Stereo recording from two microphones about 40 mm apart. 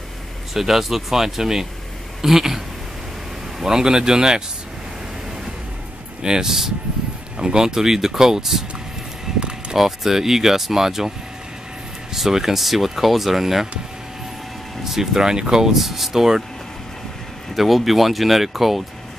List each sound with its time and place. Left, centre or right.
0.6 s speech: centre
6.2 s speech: centre
9.3 s a sound: centre
9.8 s speech: centre
14.9 s speech: centre
17.6 s speech: centre